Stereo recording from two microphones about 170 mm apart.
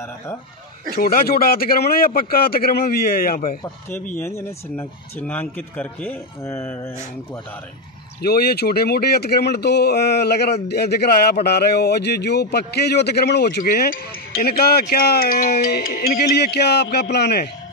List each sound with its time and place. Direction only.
0.9 s a man's voice: 65° left (ahead or behind)
4.2 s speech: 15° left (ahead or behind)
8.2 s speech: 65° left (ahead or behind)